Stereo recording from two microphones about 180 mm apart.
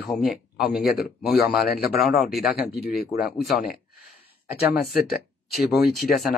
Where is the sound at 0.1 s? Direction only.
Centre (ahead or behind).